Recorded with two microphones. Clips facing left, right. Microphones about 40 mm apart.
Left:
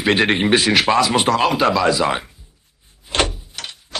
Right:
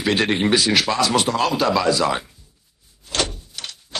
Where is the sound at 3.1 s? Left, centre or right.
Left.